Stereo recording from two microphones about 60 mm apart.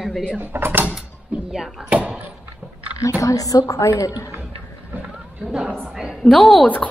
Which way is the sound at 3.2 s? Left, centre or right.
Left.